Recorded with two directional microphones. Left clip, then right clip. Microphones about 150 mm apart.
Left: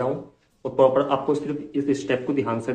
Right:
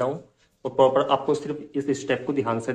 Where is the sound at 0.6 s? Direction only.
35° right (ahead or behind).